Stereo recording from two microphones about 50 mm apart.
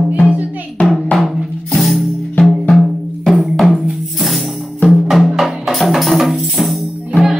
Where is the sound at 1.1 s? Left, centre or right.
Centre.